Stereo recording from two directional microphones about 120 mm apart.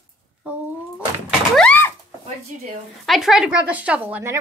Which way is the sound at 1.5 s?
5° left (ahead or behind).